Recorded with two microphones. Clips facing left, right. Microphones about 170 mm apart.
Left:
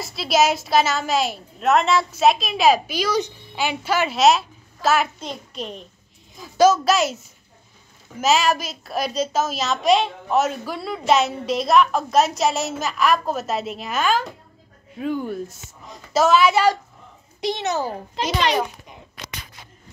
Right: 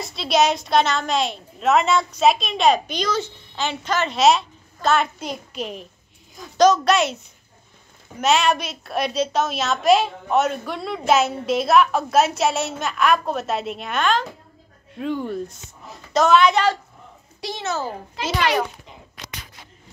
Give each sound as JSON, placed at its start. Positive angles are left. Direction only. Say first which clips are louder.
{"t": 0.0, "sound": "a woman's voice", "louder": "even", "side_deg": 0}
{"t": 8.2, "sound": "a woman's voice", "louder": "even", "side_deg": 0}
{"t": 17.4, "sound": "a child's voice", "louder": "left 3 dB", "side_deg": 20}